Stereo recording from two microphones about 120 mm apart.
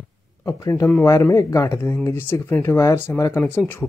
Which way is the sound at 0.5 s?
25° left (ahead or behind).